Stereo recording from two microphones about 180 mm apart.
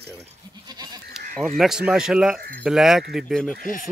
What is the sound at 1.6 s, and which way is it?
Speech, 5° right (ahead or behind).